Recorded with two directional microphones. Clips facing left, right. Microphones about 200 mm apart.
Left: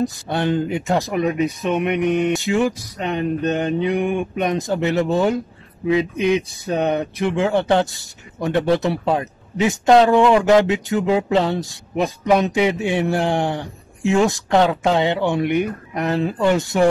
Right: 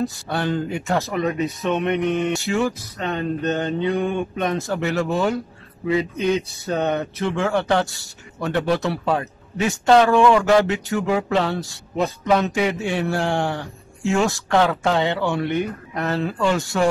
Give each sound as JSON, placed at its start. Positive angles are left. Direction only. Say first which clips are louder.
{"t": 0.0, "sound": "speech", "louder": "left 3 dB", "side_deg": 20}